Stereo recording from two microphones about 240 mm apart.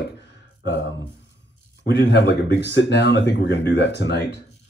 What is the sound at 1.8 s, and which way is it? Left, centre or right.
Speech, left.